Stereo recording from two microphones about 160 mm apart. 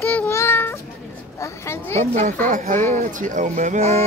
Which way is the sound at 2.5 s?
55° right (ahead or behind).